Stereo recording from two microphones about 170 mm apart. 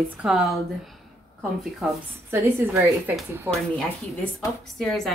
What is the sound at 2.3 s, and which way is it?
Speech, 15° right (ahead or behind).